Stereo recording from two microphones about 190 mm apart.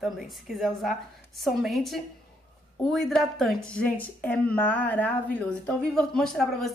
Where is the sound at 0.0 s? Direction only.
Centre (ahead or behind).